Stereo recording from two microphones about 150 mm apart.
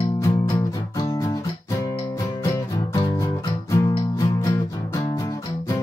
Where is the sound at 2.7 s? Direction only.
20° left (ahead or behind).